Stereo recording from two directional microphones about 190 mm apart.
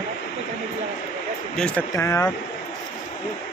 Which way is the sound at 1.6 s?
5° left (ahead or behind).